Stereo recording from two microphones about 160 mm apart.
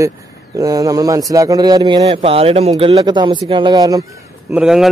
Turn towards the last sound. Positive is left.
turn(degrees=-5)  # may be behind; listen again after turning